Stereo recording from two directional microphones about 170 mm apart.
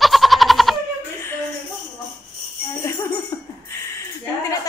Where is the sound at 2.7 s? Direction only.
15° left (ahead or behind).